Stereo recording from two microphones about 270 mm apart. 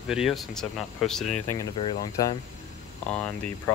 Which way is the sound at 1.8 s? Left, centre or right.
Centre.